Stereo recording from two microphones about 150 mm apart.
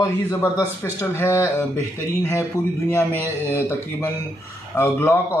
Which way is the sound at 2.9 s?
15° left (ahead or behind).